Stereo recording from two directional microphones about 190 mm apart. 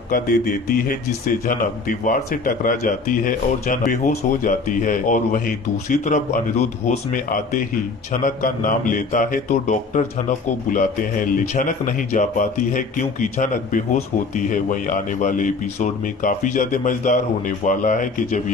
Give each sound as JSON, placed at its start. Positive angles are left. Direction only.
{"t": 0.1, "sound": "a man's voice", "side_deg": 50}